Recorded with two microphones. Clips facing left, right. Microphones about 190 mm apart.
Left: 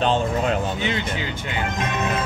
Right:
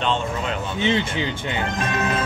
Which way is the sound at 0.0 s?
40° left (ahead or behind).